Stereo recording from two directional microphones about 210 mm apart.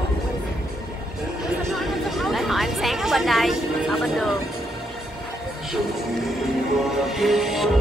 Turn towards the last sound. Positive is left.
turn(degrees=0)  # may be behind; listen again after turning